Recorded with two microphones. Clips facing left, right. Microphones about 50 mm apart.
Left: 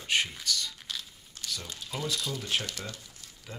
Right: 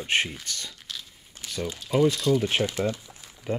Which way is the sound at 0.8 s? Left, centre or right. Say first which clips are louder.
Even; centre.